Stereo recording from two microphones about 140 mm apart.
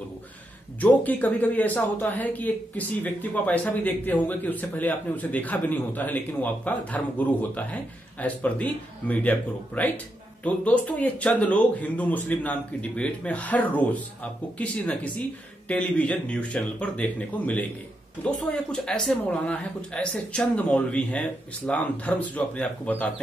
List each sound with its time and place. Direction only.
0.7 s speech: 10° left (ahead or behind)